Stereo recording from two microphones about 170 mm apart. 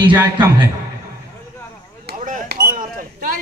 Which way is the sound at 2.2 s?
55° right (ahead or behind).